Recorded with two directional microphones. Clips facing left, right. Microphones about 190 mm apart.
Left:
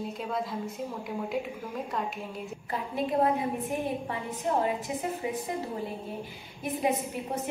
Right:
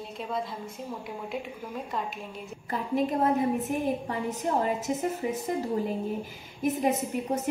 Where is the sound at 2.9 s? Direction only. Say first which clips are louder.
Right 2 dB; 45° right (ahead or behind).